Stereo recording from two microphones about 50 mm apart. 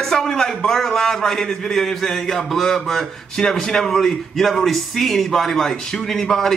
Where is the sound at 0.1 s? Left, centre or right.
Centre.